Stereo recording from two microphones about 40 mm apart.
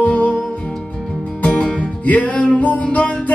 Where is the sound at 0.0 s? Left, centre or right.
Left.